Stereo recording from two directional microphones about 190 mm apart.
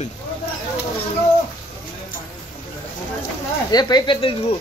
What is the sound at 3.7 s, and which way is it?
Speech, 20° left (ahead or behind).